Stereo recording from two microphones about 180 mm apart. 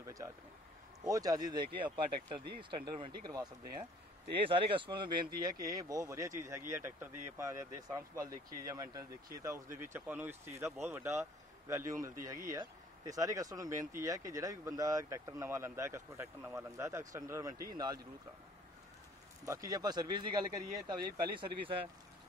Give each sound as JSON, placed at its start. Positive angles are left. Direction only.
{"t": 0.0, "sound": "a sound", "side_deg": -15}
{"t": 1.0, "sound": "speech", "side_deg": -20}
{"t": 19.4, "sound": "speech", "side_deg": -20}